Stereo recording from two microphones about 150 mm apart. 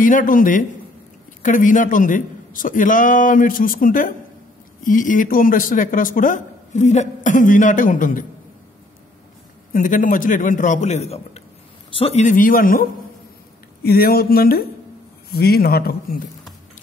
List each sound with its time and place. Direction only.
0.0 s speech: 65° left (ahead or behind)
9.7 s speech: 65° left (ahead or behind); by 12.3 s 40° left (ahead or behind)
12.3 s a man's voice: 65° left (ahead or behind)
13.8 s speech: 90° left